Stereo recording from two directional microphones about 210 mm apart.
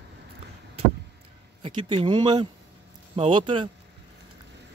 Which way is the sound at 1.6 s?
20° right (ahead or behind).